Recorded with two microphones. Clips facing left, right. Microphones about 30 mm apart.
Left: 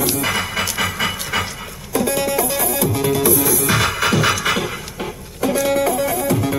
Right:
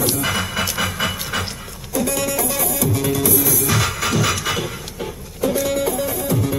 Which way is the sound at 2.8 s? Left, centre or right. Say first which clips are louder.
Left 2 dB; left.